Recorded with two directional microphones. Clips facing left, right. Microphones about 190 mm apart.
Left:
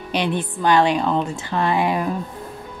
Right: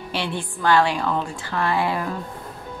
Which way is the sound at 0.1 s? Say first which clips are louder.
Left 6 dB; 20° left (ahead or behind).